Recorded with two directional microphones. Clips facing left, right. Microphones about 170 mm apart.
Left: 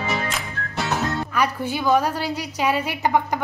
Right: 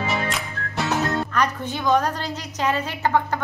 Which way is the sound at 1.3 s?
10° left (ahead or behind).